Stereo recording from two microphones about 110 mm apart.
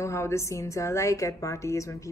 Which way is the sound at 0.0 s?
25° left (ahead or behind).